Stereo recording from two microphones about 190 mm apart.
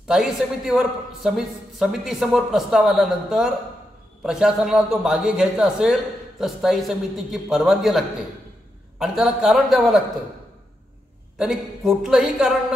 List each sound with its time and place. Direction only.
0.1 s a man's voice: centre (ahead or behind)
9.0 s a man's voice: centre (ahead or behind)
11.3 s a man's voice: 5° right (ahead or behind)